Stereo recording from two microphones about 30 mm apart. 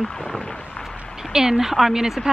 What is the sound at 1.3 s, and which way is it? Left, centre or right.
Speech, centre.